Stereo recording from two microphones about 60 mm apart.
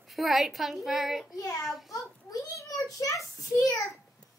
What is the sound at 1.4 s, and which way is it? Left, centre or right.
Speech, left.